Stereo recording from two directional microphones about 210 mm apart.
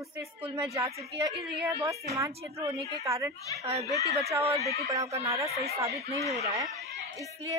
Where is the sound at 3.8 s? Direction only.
15° left (ahead or behind).